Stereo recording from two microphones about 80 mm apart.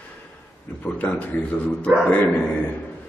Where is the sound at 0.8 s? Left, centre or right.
Centre.